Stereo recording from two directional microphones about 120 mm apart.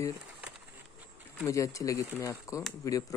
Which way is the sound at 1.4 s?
25° left (ahead or behind).